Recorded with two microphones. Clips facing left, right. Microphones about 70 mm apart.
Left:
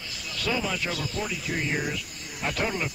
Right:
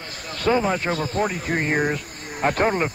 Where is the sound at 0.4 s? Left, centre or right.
Right.